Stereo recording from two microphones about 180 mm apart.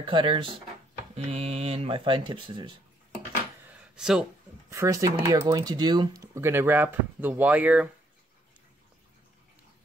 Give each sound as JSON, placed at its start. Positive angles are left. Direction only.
{"t": 0.0, "sound": "speech", "side_deg": -25}
{"t": 3.6, "sound": "a sound", "side_deg": -5}
{"t": 4.6, "sound": "speech", "side_deg": -15}